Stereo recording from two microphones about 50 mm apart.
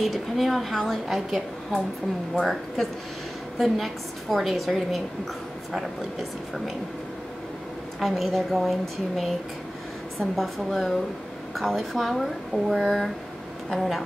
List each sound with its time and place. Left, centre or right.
0.0 s a woman's voice: centre
8.0 s a woman's voice: centre
10.3 s a woman's voice: centre